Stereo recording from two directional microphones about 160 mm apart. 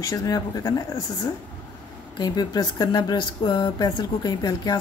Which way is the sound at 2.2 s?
25° left (ahead or behind).